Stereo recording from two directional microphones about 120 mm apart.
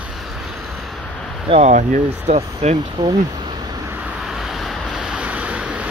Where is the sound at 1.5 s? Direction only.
70° right (ahead or behind).